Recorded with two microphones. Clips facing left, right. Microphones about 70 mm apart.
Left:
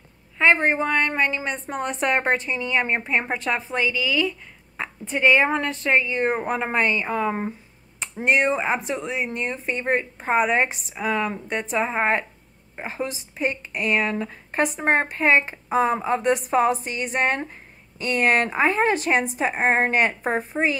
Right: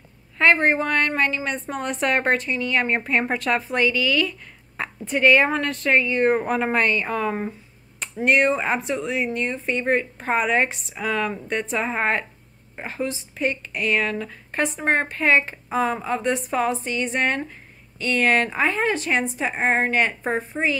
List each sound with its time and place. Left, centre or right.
0.4 s a woman's voice: centre
8.8 s a woman's voice: left